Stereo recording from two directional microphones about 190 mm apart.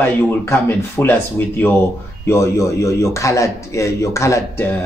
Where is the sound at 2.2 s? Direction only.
15° left (ahead or behind).